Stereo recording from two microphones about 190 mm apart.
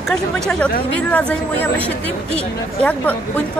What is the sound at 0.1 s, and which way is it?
Speech, 5° left (ahead or behind).